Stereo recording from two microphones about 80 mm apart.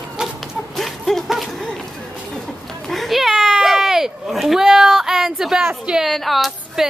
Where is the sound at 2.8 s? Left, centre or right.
Centre.